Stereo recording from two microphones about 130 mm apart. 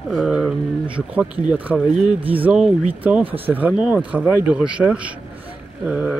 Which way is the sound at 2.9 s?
15° right (ahead or behind).